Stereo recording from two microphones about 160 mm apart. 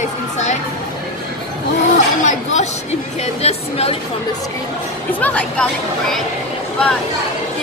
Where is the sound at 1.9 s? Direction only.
50° left (ahead or behind).